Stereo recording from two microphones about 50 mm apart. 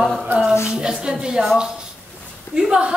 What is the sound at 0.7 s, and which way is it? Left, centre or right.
Speech, centre.